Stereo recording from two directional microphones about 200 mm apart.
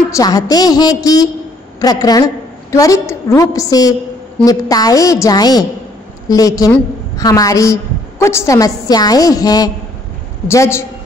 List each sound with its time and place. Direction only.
0.1 s a woman's voice: 15° left (ahead or behind)